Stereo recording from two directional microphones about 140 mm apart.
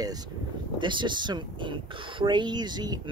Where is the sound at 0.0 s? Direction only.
30° right (ahead or behind).